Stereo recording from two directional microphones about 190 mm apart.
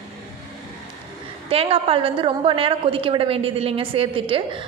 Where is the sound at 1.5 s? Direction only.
30° right (ahead or behind).